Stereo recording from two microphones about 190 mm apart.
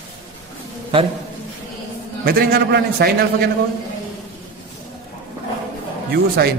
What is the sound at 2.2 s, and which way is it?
Speech, 50° right (ahead or behind).